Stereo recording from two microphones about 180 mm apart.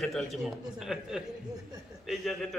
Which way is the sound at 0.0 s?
Centre (ahead or behind).